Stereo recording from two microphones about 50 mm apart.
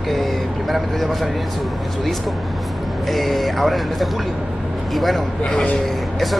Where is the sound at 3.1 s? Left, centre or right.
Centre.